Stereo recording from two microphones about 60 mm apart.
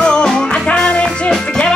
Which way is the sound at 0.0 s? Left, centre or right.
Centre.